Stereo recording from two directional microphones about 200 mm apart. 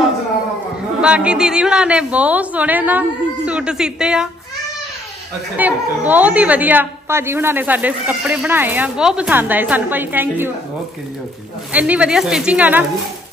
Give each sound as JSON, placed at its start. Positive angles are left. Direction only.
{"t": 1.0, "sound": "a woman's voice", "side_deg": -5}
{"t": 5.6, "sound": "a woman's voice", "side_deg": -10}
{"t": 11.7, "sound": "a woman's voice", "side_deg": -5}